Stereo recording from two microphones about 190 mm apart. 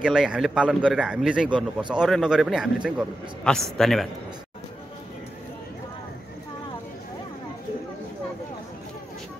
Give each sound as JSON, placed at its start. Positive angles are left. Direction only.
{"t": 0.0, "sound": "a man's voice", "side_deg": -5}